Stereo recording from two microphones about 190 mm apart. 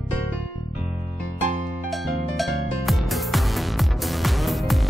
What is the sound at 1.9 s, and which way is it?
Music, centre (ahead or behind).